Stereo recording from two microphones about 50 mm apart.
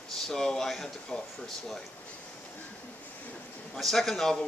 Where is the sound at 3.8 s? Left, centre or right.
Centre.